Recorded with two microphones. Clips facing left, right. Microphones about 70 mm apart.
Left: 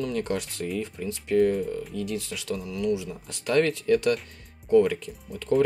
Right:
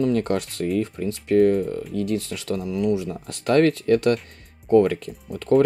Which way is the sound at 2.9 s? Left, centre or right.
Right.